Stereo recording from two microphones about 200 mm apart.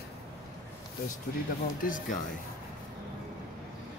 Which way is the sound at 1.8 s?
40° left (ahead or behind).